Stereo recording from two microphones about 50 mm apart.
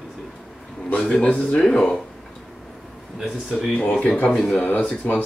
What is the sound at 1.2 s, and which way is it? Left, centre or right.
Speech, left.